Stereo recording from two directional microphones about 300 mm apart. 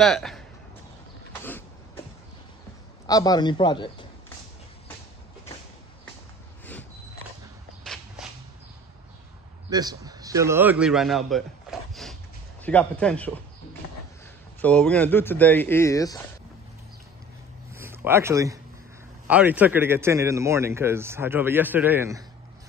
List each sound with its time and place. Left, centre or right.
0.0 s a man's voice: centre
1.3 s a sound: centre
3.1 s speech: centre
6.6 s a sound: centre
7.8 s walk: centre
9.7 s a man's voice: centre
11.9 s a sound: centre
12.6 s a man's voice: centre
14.6 s speech: centre
17.7 s a man's voice: centre